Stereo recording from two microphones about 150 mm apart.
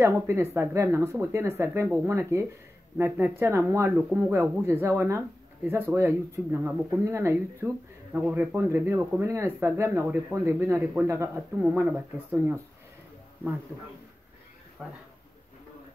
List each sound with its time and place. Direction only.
0.0 s speech: 15° right (ahead or behind)
14.8 s speech: centre (ahead or behind)